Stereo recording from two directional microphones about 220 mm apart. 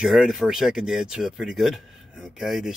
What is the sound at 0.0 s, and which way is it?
Speech, centre (ahead or behind).